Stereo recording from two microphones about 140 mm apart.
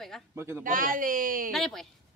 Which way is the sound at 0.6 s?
75° right (ahead or behind).